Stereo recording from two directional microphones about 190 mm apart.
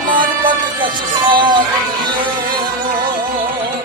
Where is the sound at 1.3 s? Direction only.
25° right (ahead or behind).